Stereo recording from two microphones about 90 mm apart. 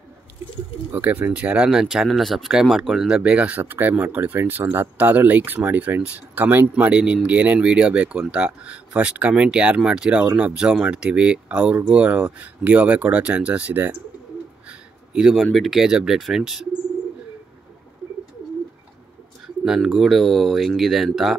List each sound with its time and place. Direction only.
0.9 s speech: 20° right (ahead or behind)
14.7 s a sound: 5° right (ahead or behind)
15.5 s speech: centre (ahead or behind)
19.6 s speech: 5° right (ahead or behind)